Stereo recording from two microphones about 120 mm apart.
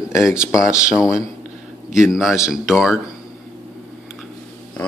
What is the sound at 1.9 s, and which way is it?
Speech, 5° right (ahead or behind).